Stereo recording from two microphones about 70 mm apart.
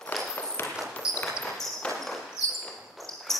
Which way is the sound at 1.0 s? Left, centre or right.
Centre.